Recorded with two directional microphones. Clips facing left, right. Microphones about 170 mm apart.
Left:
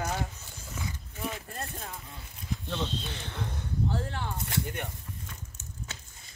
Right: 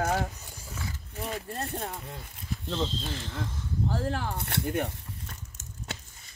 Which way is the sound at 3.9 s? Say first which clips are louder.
Right 3 dB; 40° right (ahead or behind).